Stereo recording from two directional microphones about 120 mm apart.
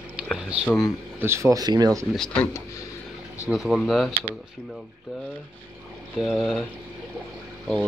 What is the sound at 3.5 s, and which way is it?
Speech, centre (ahead or behind).